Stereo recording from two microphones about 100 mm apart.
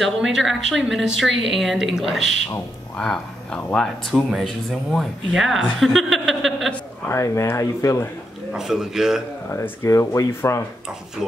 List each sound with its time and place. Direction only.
0.0 s a woman's voice: centre (ahead or behind)
7.1 s speech: 30° left (ahead or behind)
8.5 s a woman's voice: 5° right (ahead or behind)
9.5 s speech: 30° left (ahead or behind)